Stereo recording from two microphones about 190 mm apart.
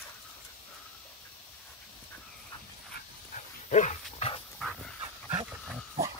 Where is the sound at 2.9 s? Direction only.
40° left (ahead or behind).